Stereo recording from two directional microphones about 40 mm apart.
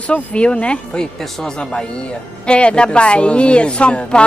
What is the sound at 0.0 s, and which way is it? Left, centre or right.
Speech, left.